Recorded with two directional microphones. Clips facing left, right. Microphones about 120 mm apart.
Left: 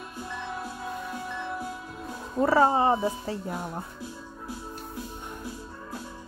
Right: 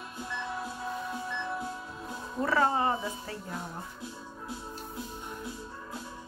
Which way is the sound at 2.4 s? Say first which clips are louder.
Left 6 dB; 30° left (ahead or behind).